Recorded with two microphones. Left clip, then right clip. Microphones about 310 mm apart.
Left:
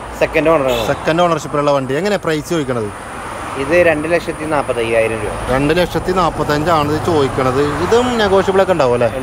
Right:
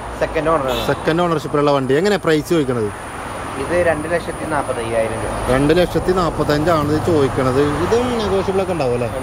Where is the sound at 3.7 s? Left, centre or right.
Left.